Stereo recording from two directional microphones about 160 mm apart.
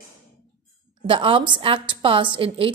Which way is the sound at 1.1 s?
35° right (ahead or behind).